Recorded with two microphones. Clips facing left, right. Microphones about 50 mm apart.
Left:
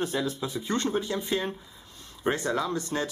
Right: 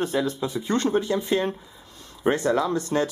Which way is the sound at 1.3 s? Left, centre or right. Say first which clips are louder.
Right 5 dB; centre.